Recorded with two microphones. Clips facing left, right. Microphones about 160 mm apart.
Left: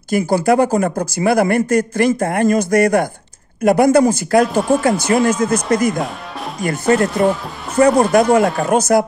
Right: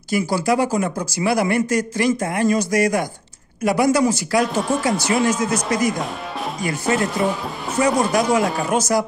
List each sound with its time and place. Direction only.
0.1 s speech: 55° left (ahead or behind)
4.6 s speech: centre (ahead or behind)
4.8 s speech: 50° left (ahead or behind)